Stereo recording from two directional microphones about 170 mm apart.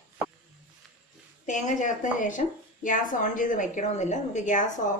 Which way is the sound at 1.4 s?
45° left (ahead or behind).